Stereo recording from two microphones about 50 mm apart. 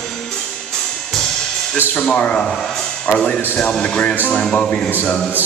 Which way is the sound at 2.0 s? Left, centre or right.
Left.